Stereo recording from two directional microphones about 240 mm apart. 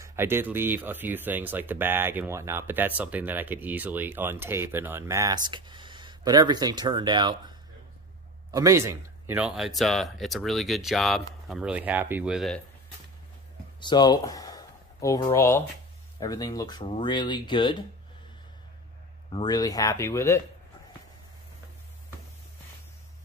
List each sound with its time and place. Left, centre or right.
0.0 s speech: centre
13.7 s speech: centre
19.3 s speech: centre